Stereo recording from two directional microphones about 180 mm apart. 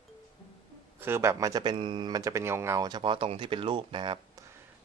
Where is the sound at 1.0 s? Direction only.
15° right (ahead or behind).